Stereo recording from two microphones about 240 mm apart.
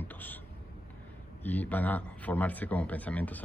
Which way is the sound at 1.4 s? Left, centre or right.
Centre.